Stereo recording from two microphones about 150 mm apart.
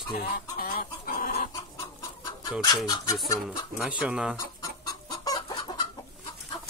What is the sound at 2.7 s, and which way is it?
Chicken, 25° left (ahead or behind).